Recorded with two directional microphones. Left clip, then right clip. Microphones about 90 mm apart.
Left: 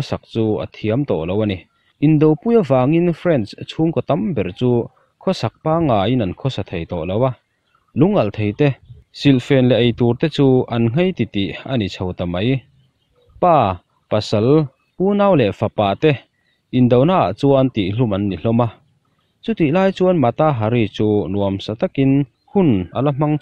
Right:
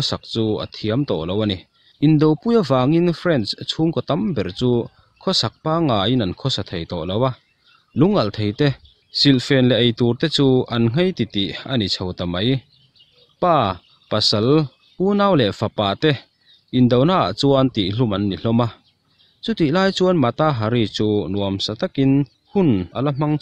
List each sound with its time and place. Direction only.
0.4 s speech: 5° right (ahead or behind)
0.7 s speech: 10° left (ahead or behind)
0.9 s speech: 5° right (ahead or behind)
5.3 s speech: 10° left (ahead or behind)
17.9 s speech: 5° right (ahead or behind)
21.5 s speech: 15° left (ahead or behind)